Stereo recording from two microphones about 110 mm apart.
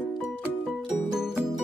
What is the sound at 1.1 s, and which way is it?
Music, 5° right (ahead or behind).